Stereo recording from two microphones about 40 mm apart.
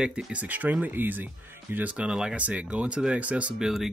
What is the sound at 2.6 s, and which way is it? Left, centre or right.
Speech, right.